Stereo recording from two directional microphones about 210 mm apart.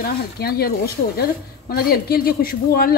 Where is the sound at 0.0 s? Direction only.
45° left (ahead or behind).